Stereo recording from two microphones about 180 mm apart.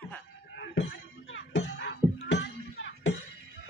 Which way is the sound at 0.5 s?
90° left.